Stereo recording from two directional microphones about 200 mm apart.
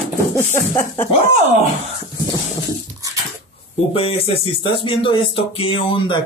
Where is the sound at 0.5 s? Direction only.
10° left (ahead or behind).